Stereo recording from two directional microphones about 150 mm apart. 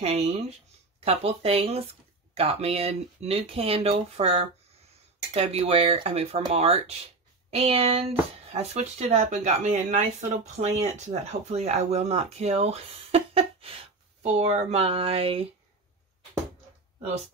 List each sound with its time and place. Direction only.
0.7 s speech: 40° right (ahead or behind)